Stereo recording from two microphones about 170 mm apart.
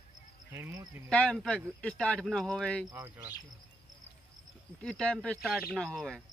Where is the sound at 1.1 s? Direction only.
5° left (ahead or behind).